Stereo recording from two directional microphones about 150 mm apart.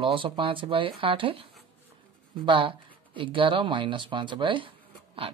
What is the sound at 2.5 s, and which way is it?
Speech, 35° right (ahead or behind).